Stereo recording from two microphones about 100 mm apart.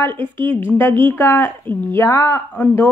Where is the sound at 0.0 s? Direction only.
20° left (ahead or behind).